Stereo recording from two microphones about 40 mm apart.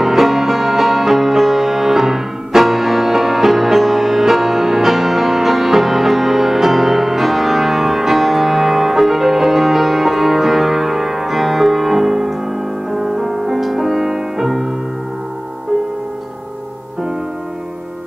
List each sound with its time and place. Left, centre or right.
0.0 s music: centre